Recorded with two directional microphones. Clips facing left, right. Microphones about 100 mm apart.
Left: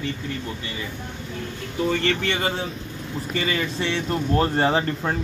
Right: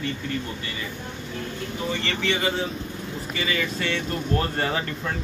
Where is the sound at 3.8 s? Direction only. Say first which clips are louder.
Left 3 dB; 25° left (ahead or behind).